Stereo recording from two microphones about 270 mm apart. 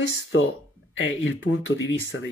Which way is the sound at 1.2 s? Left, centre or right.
Left.